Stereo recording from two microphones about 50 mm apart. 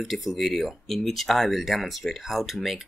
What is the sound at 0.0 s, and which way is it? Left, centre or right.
Speech, centre.